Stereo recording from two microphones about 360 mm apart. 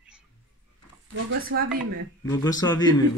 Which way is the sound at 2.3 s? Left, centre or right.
Centre.